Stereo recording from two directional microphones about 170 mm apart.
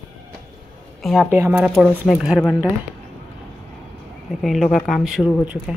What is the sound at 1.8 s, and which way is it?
Speech, 5° left (ahead or behind).